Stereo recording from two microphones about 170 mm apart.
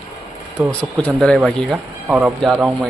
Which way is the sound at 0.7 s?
5° left (ahead or behind).